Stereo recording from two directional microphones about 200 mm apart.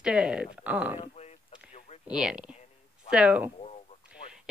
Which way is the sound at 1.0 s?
35° left (ahead or behind).